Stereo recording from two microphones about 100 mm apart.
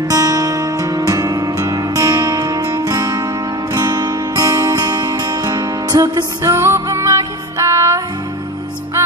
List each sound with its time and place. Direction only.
0.1 s music: 35° right (ahead or behind)